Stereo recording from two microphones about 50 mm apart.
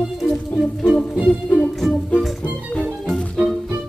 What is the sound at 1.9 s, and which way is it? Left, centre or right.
Music, left.